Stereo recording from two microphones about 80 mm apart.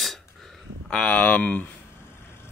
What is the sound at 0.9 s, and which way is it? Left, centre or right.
Speech, centre.